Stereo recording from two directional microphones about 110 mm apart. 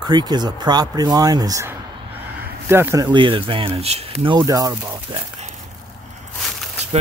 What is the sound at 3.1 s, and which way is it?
Speech, 50° right (ahead or behind).